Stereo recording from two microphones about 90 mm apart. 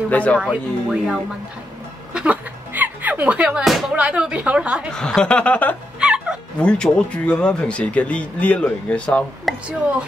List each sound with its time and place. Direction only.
0.1 s speech: 15° left (ahead or behind)
0.4 s a woman's voice: 10° right (ahead or behind)
2.1 s a sound: 15° right (ahead or behind)
3.9 s a woman's voice: 15° right (ahead or behind)
4.9 s speech: 10° left (ahead or behind)
5.9 s music: 10° right (ahead or behind)
6.6 s speech: 10° left (ahead or behind)
9.5 s speech: centre (ahead or behind)